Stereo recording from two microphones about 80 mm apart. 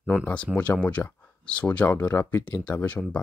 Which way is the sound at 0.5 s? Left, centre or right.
Centre.